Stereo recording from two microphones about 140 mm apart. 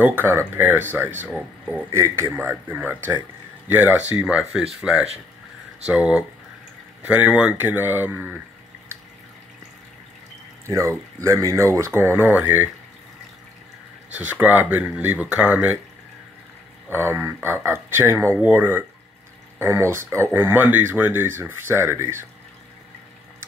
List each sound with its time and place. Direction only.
0.0 s speech: 15° right (ahead or behind)
5.9 s speech: 10° right (ahead or behind)
10.7 s speech: 20° right (ahead or behind)
14.1 s speech: 10° right (ahead or behind)
16.9 s speech: 15° right (ahead or behind)